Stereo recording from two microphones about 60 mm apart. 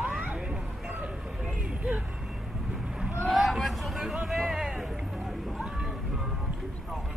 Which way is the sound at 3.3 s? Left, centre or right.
Centre.